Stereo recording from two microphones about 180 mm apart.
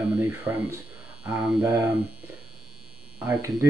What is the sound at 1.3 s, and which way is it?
Speech, 15° right (ahead or behind).